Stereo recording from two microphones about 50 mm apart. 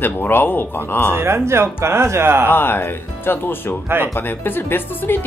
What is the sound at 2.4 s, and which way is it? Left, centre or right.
Speech, left.